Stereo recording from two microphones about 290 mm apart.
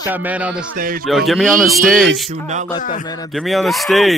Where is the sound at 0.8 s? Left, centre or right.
Right.